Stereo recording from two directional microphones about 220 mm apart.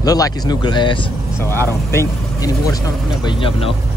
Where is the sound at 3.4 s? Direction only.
25° left (ahead or behind).